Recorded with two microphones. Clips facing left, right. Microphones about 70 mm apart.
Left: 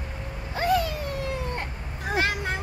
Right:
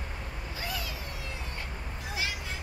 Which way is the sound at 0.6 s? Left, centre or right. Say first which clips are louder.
Left 15 dB; left.